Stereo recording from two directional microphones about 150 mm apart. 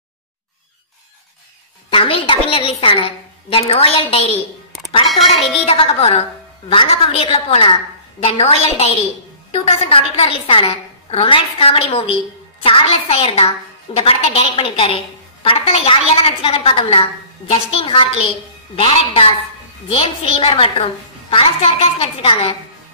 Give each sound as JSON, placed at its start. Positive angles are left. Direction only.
{"t": 1.9, "sound": "a woman's voice", "side_deg": 35}
{"t": 5.7, "sound": "a woman's voice", "side_deg": 40}